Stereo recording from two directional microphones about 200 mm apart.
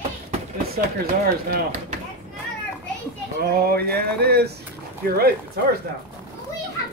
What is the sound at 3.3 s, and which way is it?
Speech, 50° right (ahead or behind).